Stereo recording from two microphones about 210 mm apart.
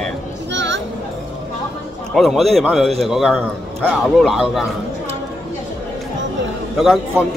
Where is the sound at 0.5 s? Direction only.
60° right (ahead or behind).